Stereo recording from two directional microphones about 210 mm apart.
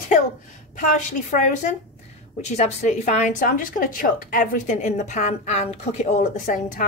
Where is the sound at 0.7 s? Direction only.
35° left (ahead or behind).